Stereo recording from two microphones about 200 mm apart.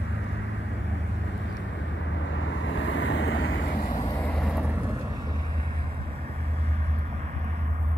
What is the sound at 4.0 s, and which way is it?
Vehicle, 20° left (ahead or behind).